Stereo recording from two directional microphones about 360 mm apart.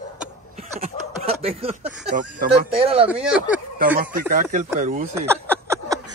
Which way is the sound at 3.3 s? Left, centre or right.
Centre.